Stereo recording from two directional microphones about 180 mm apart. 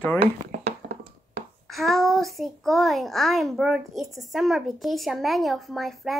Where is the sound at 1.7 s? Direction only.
Centre (ahead or behind).